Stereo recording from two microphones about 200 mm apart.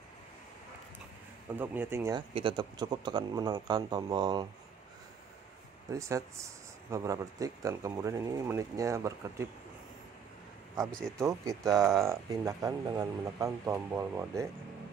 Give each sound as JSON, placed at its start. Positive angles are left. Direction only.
{"t": 1.6, "sound": "speech", "side_deg": -10}
{"t": 5.9, "sound": "speech", "side_deg": -15}
{"t": 11.1, "sound": "speech", "side_deg": -15}